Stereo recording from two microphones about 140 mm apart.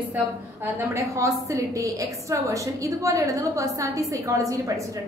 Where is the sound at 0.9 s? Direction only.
25° right (ahead or behind).